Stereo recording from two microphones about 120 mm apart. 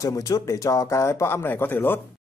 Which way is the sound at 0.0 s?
30° left (ahead or behind).